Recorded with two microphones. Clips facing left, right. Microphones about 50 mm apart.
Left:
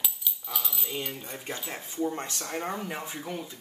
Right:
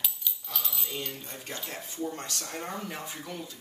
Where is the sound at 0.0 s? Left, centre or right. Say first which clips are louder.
Left 1 dB; centre.